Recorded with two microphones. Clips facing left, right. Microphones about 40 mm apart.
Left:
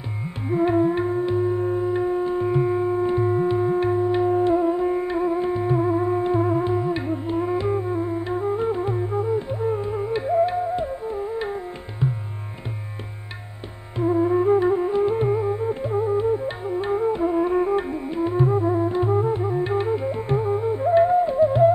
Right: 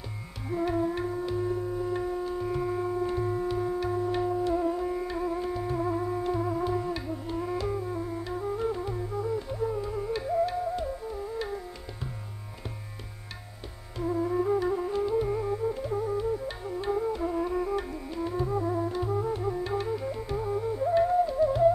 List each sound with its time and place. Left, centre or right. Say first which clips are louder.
0.5 s music: left 8 dB; left
4.3 s music: left 8 dB; left
4.6 s music: left 8 dB; left
13.9 s flute: left 8 dB; left
15.3 s music: left 6 dB; left